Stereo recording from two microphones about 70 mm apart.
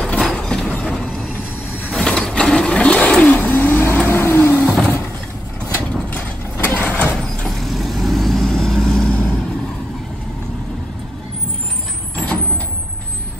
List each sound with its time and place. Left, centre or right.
0.0 s a sound: centre
2.0 s sewing machine: centre
3.3 s vehicle: left
6.0 s mechanisms: left
7.2 s vehicle: centre